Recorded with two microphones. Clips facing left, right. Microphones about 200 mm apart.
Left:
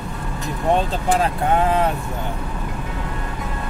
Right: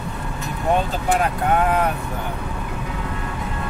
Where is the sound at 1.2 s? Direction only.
25° left (ahead or behind).